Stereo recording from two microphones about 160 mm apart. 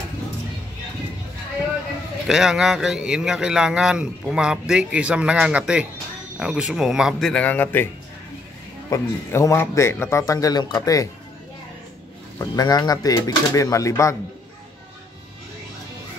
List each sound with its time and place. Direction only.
2.2 s a man's voice: 5° right (ahead or behind); by 7.9 s 10° left (ahead or behind)
8.9 s speech: 20° left (ahead or behind)
12.4 s speech: 25° left (ahead or behind)